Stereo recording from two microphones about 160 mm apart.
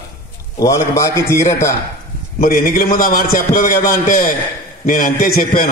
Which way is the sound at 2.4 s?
60° left (ahead or behind).